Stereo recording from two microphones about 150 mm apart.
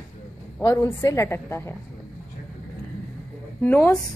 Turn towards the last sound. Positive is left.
turn(degrees=10)  # may be behind; listen again after turning